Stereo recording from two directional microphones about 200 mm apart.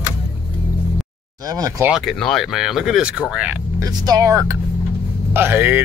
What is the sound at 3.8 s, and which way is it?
Speech, 15° right (ahead or behind).